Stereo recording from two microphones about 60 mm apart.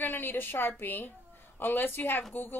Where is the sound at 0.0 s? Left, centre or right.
Left.